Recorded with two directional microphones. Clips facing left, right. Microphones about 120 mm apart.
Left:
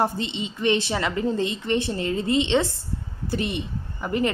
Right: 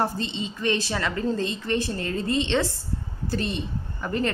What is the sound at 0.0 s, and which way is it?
A woman's voice, 20° left (ahead or behind).